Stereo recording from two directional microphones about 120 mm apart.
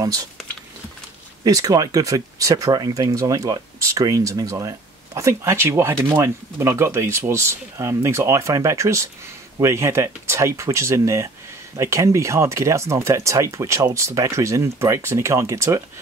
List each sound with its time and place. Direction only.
0.0 s speech: 30° right (ahead or behind)
1.4 s speech: 30° right (ahead or behind)